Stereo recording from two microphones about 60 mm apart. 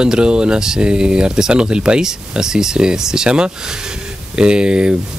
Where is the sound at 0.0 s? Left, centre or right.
Centre.